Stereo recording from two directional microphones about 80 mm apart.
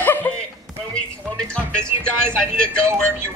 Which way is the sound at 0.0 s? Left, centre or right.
Left.